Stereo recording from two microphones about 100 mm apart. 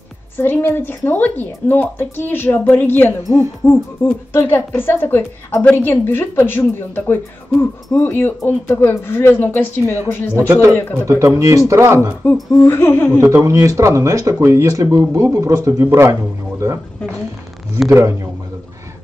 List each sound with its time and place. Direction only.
0.4 s speech: 20° left (ahead or behind)
11.1 s speech: 30° right (ahead or behind)
12.6 s speech: 25° left (ahead or behind)
13.2 s speech: 30° right (ahead or behind)
17.8 s speech: 30° right (ahead or behind)